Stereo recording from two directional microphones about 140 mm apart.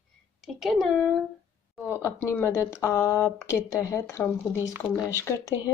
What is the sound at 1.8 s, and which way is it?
Speech, 20° left (ahead or behind).